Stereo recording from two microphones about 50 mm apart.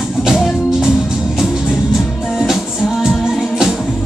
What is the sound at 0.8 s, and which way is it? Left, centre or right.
Music, centre.